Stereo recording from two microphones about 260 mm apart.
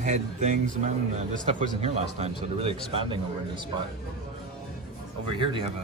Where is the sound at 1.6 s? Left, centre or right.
Right.